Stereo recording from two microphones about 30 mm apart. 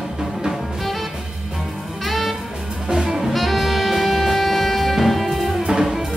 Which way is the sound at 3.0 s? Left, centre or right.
Centre.